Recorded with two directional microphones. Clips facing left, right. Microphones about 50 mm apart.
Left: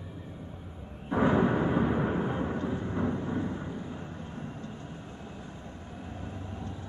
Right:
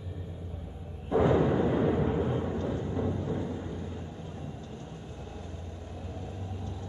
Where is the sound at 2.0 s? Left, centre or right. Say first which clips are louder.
Right 1 dB; left.